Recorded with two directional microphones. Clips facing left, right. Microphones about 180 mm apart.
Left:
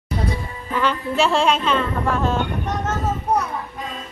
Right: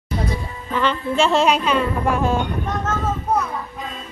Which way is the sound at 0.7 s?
5° left (ahead or behind).